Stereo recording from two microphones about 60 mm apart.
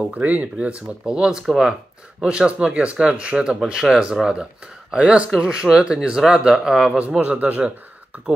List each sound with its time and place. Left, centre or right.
0.0 s speech: right